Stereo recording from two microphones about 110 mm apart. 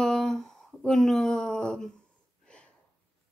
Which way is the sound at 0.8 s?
5° left (ahead or behind).